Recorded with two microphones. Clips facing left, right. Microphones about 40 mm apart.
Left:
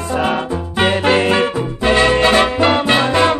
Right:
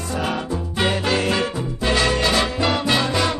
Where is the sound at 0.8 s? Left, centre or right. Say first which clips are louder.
Left 7 dB; left.